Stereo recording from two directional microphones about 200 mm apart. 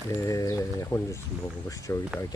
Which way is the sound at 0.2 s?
15° left (ahead or behind).